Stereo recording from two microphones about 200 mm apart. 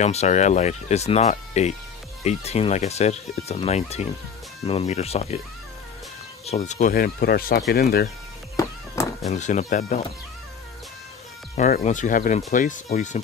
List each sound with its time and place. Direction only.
0.0 s speech: 35° left (ahead or behind)
6.4 s speech: 35° left (ahead or behind); by 8.1 s 50° left (ahead or behind)
8.6 s music: 15° left (ahead or behind)
9.0 s cat: 15° left (ahead or behind)
9.3 s speech: 35° left (ahead or behind)
11.5 s speech: 40° left (ahead or behind)